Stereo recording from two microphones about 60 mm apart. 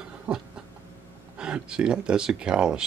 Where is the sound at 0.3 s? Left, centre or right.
Right.